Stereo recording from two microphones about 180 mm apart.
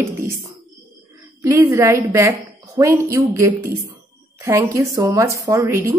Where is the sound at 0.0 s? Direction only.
15° right (ahead or behind).